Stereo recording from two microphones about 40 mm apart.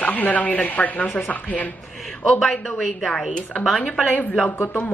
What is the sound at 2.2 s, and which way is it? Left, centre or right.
Speech, centre.